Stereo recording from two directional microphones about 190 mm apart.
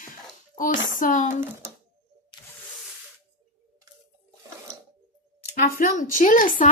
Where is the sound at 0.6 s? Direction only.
45° left (ahead or behind).